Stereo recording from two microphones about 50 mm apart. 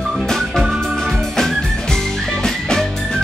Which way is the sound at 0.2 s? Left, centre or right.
Centre.